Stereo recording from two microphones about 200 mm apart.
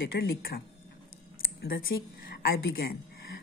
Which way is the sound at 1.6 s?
50° left (ahead or behind).